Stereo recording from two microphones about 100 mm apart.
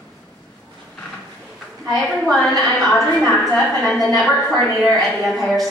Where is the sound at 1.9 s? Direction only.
5° left (ahead or behind).